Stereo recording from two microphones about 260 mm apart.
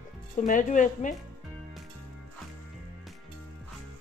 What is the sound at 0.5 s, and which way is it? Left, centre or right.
Speech, left.